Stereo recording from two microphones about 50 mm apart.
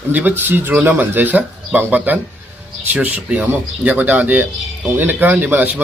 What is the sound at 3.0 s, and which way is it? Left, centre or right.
A man's voice, right.